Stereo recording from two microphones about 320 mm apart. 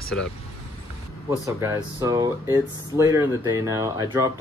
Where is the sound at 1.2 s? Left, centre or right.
Centre.